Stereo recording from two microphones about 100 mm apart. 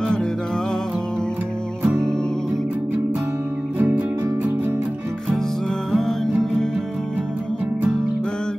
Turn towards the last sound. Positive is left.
turn(degrees=5)  # may be behind; listen again after turning